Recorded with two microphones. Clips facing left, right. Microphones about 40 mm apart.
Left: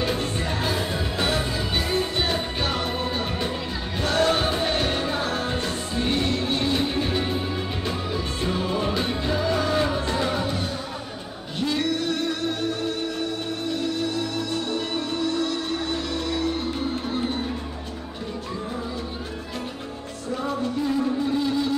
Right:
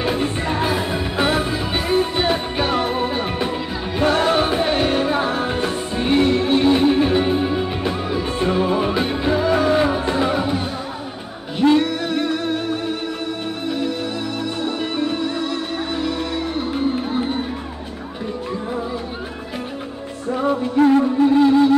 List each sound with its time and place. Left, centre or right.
0.0 s music: centre
11.8 s music: centre
20.7 s music: right
21.0 s music: right